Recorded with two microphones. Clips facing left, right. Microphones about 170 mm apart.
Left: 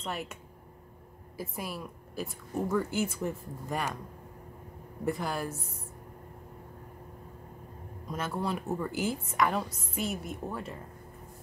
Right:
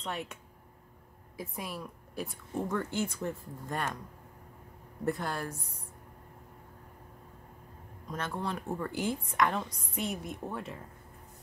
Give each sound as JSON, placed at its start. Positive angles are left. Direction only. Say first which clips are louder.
{"t": 0.0, "sound": "a woman's voice", "louder": "left 1 dB", "side_deg": 0}
{"t": 5.0, "sound": "a woman's voice", "louder": "left 1 dB", "side_deg": 0}
{"t": 8.1, "sound": "a woman's voice", "louder": "left 3 dB", "side_deg": 10}